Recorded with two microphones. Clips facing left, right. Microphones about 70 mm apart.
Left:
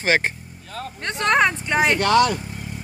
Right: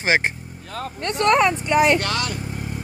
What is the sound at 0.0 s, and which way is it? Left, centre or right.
Speech, centre.